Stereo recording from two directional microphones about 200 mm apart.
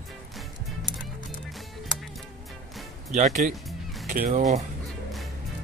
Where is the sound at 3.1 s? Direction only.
40° right (ahead or behind).